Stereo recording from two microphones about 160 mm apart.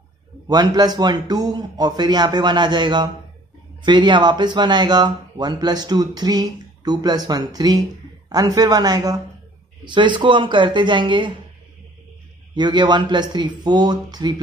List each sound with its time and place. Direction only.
0.5 s speech: 25° right (ahead or behind)
12.5 s speech: 25° right (ahead or behind)